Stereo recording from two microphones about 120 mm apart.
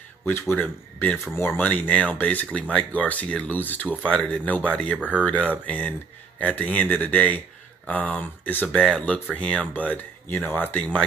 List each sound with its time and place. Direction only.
0.2 s speech: 15° left (ahead or behind)